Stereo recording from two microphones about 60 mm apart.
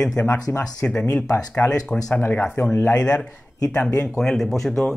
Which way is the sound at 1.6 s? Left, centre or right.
Left.